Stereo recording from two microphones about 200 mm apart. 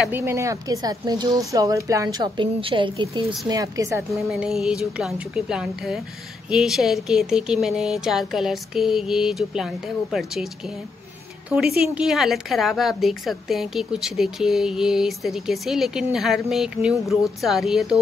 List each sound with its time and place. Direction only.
0.0 s a woman's voice: 10° right (ahead or behind)
4.3 s speech: centre (ahead or behind)
11.5 s speech: 5° right (ahead or behind)